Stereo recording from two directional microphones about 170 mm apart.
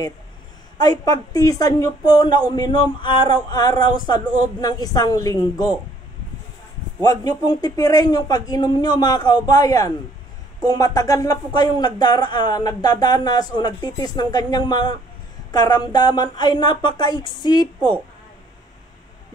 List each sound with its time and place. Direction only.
0.7 s speech: 25° left (ahead or behind)
7.0 s speech: 20° left (ahead or behind)